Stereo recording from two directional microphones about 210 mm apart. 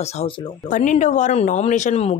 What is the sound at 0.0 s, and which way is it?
Speech, 35° left (ahead or behind).